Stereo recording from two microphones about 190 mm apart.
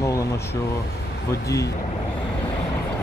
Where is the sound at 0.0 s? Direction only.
15° left (ahead or behind).